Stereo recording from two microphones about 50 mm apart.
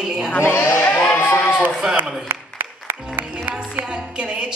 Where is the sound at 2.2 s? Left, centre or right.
Right.